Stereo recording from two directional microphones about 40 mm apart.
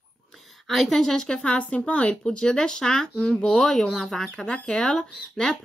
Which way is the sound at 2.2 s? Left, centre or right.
Centre.